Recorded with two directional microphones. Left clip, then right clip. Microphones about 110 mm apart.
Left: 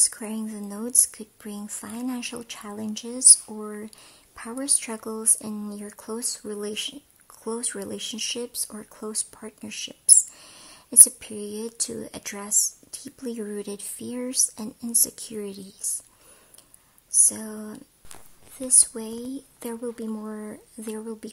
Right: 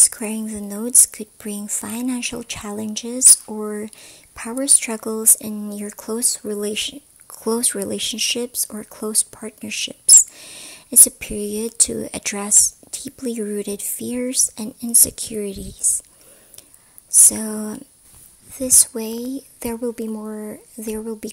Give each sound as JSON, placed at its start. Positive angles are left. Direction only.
{"t": 0.0, "sound": "speech", "side_deg": -30}
{"t": 17.3, "sound": "speech", "side_deg": -45}
{"t": 18.5, "sound": "speech", "side_deg": -30}